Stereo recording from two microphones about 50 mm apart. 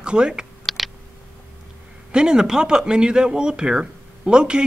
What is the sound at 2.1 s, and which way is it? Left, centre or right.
Speech, centre.